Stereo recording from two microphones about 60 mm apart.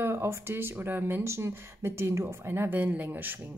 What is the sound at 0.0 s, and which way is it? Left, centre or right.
Speech, right.